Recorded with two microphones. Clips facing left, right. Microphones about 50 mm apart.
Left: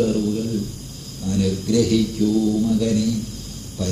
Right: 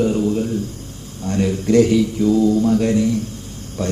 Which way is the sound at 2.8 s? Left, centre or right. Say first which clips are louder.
Right 3 dB; right.